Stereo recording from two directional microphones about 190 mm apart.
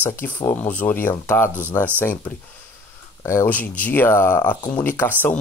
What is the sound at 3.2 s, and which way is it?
Speech, 15° left (ahead or behind).